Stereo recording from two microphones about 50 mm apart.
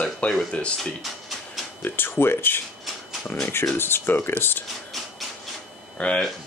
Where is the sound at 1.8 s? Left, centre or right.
Left.